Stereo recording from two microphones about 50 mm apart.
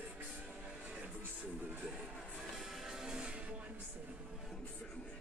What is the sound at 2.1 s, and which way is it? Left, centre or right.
Music, centre.